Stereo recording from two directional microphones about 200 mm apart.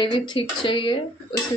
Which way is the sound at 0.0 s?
25° left (ahead or behind).